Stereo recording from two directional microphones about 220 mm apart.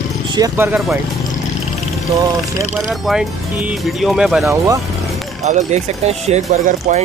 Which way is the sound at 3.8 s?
Centre (ahead or behind).